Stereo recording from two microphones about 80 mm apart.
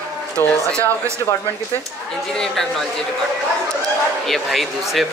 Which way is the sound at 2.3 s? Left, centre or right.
Centre.